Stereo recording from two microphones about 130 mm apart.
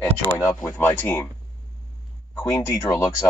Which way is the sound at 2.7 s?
25° left (ahead or behind).